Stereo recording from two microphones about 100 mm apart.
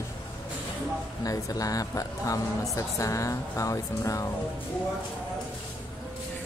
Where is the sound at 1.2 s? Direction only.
35° left (ahead or behind).